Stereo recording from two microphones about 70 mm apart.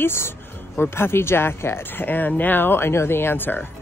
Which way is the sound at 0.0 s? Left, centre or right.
Left.